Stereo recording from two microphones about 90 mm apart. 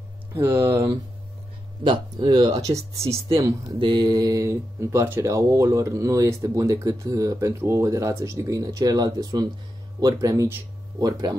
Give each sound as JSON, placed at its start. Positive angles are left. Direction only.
{"t": 0.3, "sound": "speech", "side_deg": -25}
{"t": 1.8, "sound": "speech", "side_deg": -65}
{"t": 2.2, "sound": "speech", "side_deg": -45}
{"t": 3.8, "sound": "speech", "side_deg": -55}